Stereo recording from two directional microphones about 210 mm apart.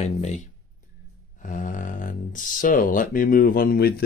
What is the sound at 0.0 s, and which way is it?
Speech, 35° left (ahead or behind).